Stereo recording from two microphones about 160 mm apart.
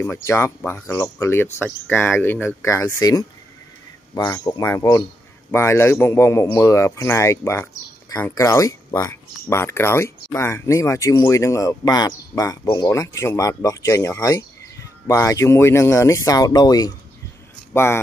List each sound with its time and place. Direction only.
0.0 s speech: 15° left (ahead or behind)